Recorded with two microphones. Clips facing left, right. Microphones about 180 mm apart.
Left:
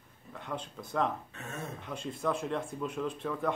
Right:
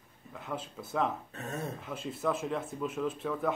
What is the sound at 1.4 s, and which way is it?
Speech, 40° right (ahead or behind).